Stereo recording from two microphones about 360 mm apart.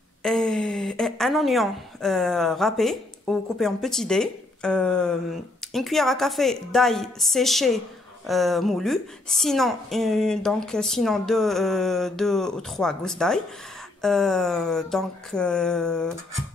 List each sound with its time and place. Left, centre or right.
0.2 s speech: centre